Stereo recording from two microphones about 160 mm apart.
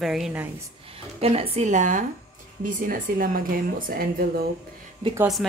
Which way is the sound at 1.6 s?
50° right (ahead or behind).